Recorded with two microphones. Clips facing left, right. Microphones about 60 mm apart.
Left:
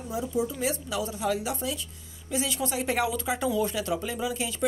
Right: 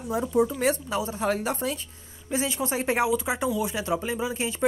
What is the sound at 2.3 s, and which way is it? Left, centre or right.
Speech, right.